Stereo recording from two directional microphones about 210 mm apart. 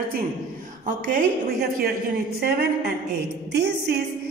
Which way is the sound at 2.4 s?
50° right (ahead or behind).